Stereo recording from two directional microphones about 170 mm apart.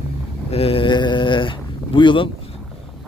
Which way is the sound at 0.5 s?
35° left (ahead or behind).